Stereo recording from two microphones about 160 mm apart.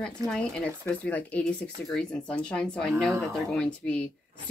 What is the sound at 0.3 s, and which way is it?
Speech, 5° left (ahead or behind).